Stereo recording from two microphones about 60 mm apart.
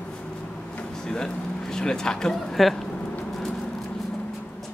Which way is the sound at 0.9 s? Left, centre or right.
Centre.